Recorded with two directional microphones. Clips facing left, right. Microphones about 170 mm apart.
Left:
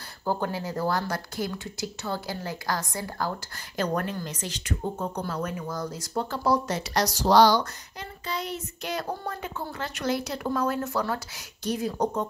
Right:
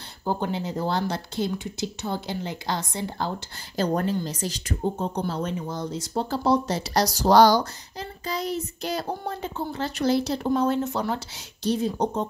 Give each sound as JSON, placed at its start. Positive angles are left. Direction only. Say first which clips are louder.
{"t": 0.2, "sound": "speech", "louder": "right 1 dB", "side_deg": -20}
{"t": 4.9, "sound": "speech", "louder": "right 3 dB", "side_deg": -25}
{"t": 8.3, "sound": "child singing", "louder": "right 4 dB", "side_deg": -40}
{"t": 9.2, "sound": "speech", "louder": "right 3 dB", "side_deg": -25}